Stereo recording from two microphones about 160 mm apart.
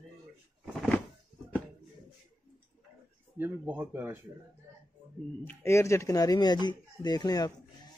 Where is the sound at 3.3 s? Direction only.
10° right (ahead or behind).